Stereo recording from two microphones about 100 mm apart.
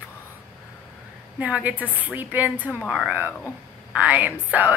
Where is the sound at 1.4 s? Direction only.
15° right (ahead or behind).